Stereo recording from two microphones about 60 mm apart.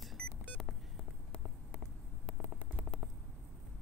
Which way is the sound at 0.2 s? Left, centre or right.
Centre.